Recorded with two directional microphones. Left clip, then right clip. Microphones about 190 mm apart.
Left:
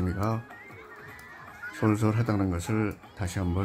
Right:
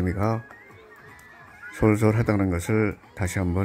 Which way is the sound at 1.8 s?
20° right (ahead or behind).